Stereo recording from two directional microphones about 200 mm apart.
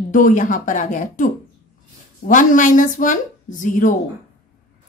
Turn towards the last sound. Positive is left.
turn(degrees=40)  # may be behind; listen again after turning